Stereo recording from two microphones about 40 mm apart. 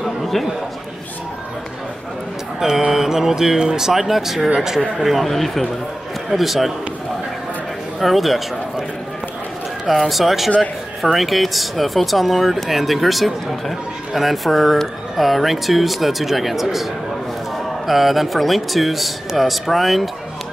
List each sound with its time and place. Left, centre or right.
0.0 s a sound: centre
2.6 s speech: centre
8.0 s speech: centre
10.0 s speech: centre
17.8 s speech: centre